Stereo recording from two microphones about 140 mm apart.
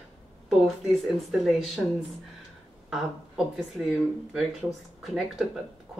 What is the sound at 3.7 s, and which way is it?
A woman's voice, centre (ahead or behind).